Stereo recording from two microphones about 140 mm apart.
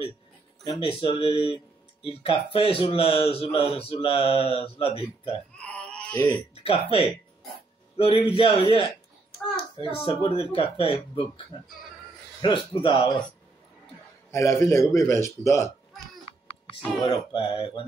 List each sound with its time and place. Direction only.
0.7 s speech: 40° left (ahead or behind)
5.6 s a sound: 10° left (ahead or behind)
6.5 s speech: 40° left (ahead or behind)
12.4 s speech: 35° left (ahead or behind)
14.3 s a man's voice: 20° left (ahead or behind)
16.3 s a sound: 40° left (ahead or behind)
17.0 s speech: 35° left (ahead or behind)